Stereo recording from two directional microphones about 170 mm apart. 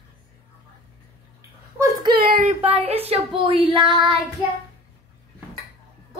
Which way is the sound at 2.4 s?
35° right (ahead or behind).